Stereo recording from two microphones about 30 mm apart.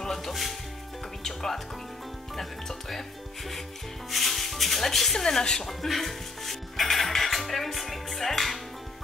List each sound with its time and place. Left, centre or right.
0.0 s music: centre
0.3 s speech: centre
1.2 s speech: centre